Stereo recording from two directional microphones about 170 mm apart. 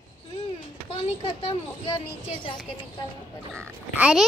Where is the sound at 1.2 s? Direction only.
30° left (ahead or behind).